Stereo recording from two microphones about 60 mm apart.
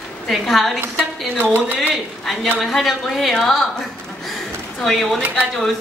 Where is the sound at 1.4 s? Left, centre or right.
Right.